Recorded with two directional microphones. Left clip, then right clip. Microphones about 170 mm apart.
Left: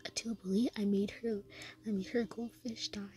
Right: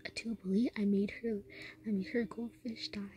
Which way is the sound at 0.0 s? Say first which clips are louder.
Left 1 dB; 20° left (ahead or behind).